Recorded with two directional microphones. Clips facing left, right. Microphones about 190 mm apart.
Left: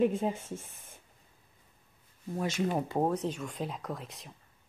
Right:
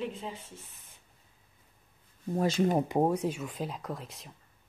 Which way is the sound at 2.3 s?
35° right (ahead or behind).